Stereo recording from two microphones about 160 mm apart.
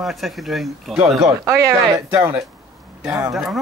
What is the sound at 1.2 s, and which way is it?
Speech, 20° right (ahead or behind).